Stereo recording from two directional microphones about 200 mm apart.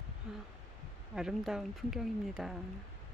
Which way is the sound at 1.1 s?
5° right (ahead or behind).